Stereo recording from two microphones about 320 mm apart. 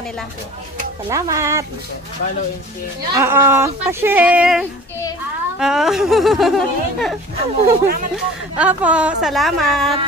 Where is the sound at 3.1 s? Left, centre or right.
Centre.